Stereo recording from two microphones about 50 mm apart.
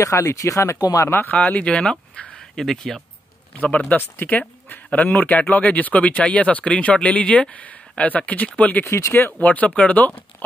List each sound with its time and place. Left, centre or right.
0.0 s speech: left
1.3 s speech: left
2.6 s speech: centre
3.9 s speech: left
8.8 s speech: left
9.4 s speech: left